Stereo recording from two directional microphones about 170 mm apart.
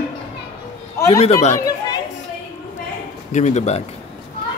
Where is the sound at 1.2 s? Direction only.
40° left (ahead or behind).